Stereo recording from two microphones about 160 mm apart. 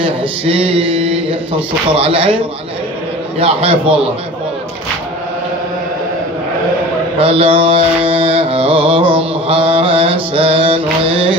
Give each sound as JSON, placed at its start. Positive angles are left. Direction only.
{"t": 0.0, "sound": "mantra", "side_deg": -35}
{"t": 3.3, "sound": "mantra", "side_deg": -35}
{"t": 7.2, "sound": "mantra", "side_deg": -35}